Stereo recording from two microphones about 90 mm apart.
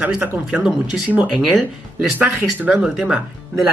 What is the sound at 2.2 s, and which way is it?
Speech, 20° right (ahead or behind).